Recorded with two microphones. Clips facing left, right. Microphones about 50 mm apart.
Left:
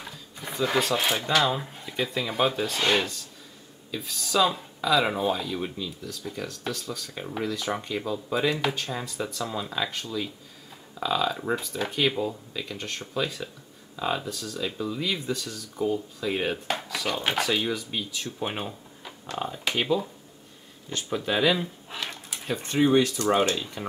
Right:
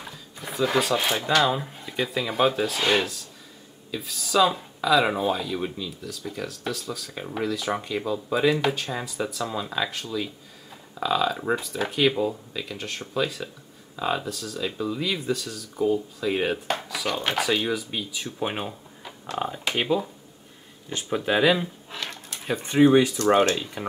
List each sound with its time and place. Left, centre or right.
0.0 s speech: centre
21.9 s a sound: centre
22.5 s speech: centre